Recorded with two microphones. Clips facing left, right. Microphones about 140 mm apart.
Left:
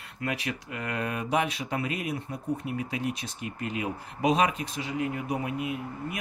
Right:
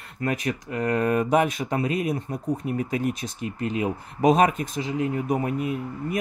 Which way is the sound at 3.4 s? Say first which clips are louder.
Right 6 dB; 30° right (ahead or behind).